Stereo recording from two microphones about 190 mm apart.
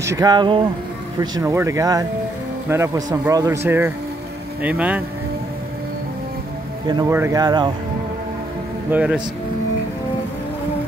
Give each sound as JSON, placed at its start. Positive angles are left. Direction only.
{"t": 0.0, "sound": "a man's voice", "side_deg": -15}
{"t": 6.9, "sound": "speech", "side_deg": -15}
{"t": 8.9, "sound": "a man's voice", "side_deg": -5}